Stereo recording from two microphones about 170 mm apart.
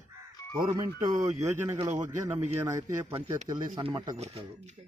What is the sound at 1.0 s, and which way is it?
A man's voice, 20° right (ahead or behind).